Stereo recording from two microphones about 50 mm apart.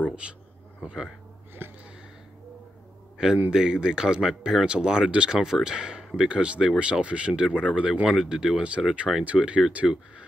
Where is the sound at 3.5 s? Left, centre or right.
Centre.